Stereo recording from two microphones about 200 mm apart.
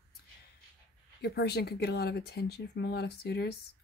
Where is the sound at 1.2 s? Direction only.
55° left (ahead or behind).